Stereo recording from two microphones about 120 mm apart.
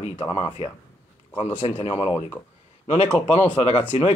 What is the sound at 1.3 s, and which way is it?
Speech, 65° left (ahead or behind).